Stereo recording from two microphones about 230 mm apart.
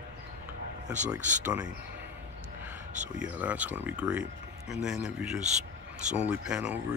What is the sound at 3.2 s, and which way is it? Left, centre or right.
Speech, centre.